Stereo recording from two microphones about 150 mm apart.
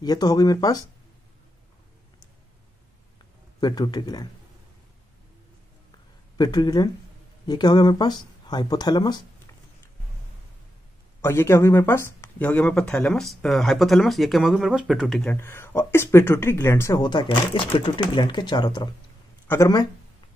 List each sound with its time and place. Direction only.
0.0 s speech: 25° left (ahead or behind)
3.6 s speech: 25° left (ahead or behind)
6.3 s speech: 25° left (ahead or behind)
11.1 s speech: 15° left (ahead or behind); by 15.2 s centre (ahead or behind)
15.2 s speech: 15° left (ahead or behind)
19.4 s a sound: 15° left (ahead or behind)